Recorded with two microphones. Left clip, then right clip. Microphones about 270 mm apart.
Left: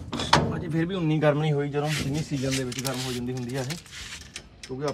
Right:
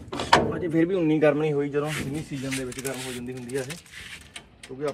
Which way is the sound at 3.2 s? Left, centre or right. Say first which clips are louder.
Even; centre.